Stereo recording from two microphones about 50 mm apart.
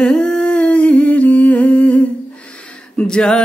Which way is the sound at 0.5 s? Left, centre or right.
Left.